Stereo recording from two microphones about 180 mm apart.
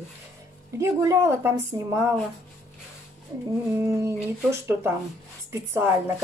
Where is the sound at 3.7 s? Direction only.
15° right (ahead or behind).